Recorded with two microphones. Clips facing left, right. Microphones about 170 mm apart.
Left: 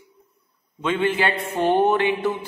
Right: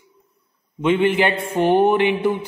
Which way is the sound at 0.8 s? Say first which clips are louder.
Right 5 dB; 15° right (ahead or behind).